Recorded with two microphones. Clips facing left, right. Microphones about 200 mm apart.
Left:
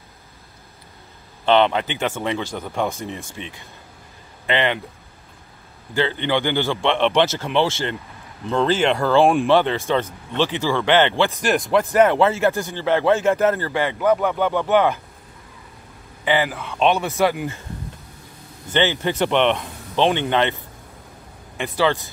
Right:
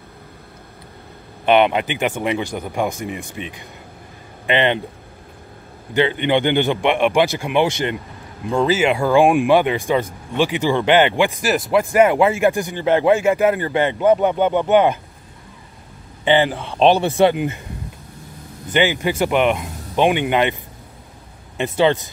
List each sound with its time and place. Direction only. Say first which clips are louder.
1.4 s a man's voice: right 2 dB; 15° right (ahead or behind)
5.9 s speech: right 4 dB; 15° right (ahead or behind)
16.3 s a man's voice: right 5 dB; 30° right (ahead or behind)
18.7 s speech: right 2 dB; 15° right (ahead or behind)
21.5 s a man's voice: right 4 dB; 20° right (ahead or behind)